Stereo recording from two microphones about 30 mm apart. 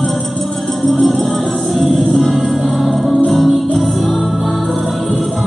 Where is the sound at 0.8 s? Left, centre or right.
Centre.